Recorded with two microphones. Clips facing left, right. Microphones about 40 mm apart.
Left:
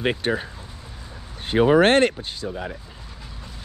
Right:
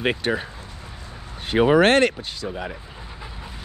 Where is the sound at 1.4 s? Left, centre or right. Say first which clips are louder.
Even; right.